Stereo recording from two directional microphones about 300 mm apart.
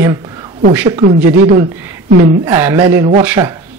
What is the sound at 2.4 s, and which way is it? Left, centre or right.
Speech, centre.